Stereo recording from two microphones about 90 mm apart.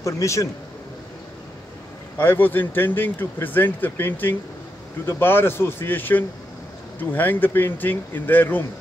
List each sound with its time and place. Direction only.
0.0 s a man's voice: 35° left (ahead or behind)
2.1 s speech: 20° left (ahead or behind)